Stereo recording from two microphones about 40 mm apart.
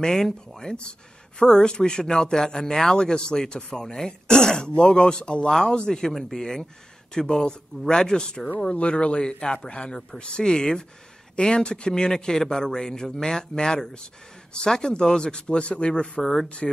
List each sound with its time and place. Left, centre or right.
0.0 s speech: centre
8.7 s speech: left
16.2 s speech: centre